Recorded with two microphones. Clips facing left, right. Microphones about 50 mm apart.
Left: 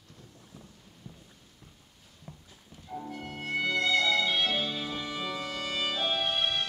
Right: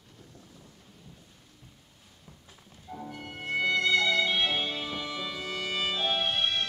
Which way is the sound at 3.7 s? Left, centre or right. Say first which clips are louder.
Right 1 dB; right.